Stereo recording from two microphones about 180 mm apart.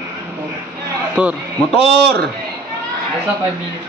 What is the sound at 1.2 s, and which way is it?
Speech, 5° right (ahead or behind).